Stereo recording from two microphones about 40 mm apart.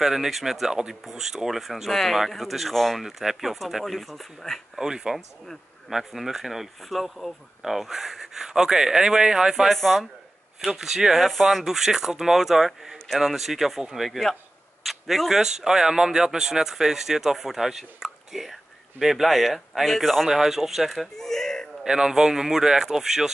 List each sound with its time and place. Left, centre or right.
0.0 s speech: centre
3.0 s speech: centre
4.7 s speech: centre
9.7 s speech: centre
10.6 s a man's voice: centre
20.2 s speech: centre
21.8 s speech: centre